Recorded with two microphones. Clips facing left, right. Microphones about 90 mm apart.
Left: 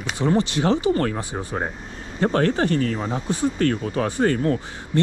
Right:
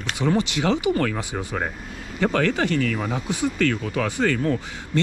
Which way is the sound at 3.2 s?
15° right (ahead or behind).